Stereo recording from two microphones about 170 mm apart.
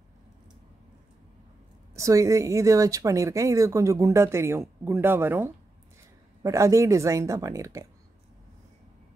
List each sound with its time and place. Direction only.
2.0 s speech: 20° right (ahead or behind)